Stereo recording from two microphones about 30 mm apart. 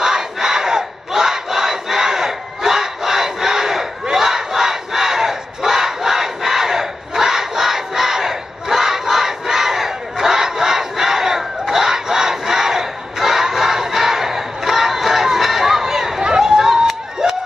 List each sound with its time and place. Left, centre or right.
0.0 s crowd: centre
4.1 s battle cry: centre